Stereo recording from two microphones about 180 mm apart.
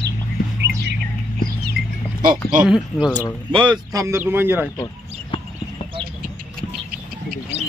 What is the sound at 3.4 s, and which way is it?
Speech, 25° right (ahead or behind).